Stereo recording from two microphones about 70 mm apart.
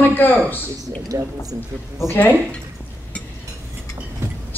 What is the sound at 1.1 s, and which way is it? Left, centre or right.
Speech, right.